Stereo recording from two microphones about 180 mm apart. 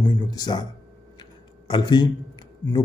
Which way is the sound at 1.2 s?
25° left (ahead or behind).